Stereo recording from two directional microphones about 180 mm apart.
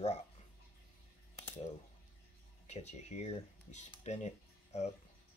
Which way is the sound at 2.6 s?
40° left (ahead or behind).